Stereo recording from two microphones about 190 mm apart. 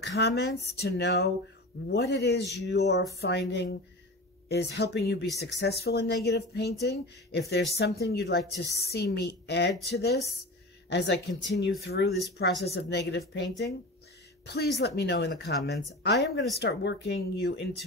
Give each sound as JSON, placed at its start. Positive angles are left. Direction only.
{"t": 0.0, "sound": "speech", "side_deg": 70}